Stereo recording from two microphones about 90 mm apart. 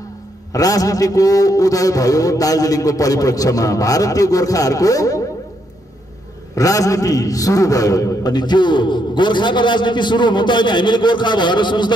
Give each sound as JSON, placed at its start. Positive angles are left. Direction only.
{"t": 0.5, "sound": "a man's voice", "side_deg": 40}
{"t": 6.5, "sound": "a man's voice", "side_deg": 40}